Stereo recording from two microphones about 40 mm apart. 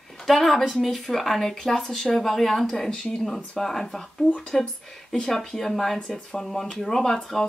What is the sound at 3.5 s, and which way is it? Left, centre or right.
Speech, centre.